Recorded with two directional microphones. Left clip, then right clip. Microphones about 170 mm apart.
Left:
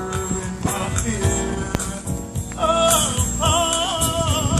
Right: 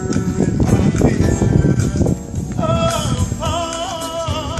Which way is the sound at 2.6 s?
30° right (ahead or behind).